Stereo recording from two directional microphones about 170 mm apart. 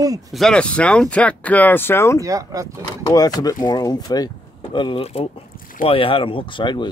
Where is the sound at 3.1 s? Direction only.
20° left (ahead or behind).